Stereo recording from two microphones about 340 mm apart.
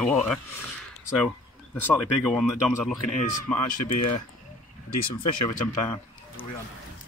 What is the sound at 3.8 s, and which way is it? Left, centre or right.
Speech, left.